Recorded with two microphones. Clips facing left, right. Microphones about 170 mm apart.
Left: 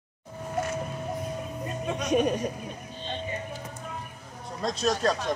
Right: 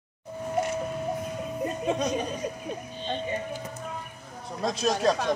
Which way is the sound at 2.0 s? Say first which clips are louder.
Left 5 dB; 75° left (ahead or behind).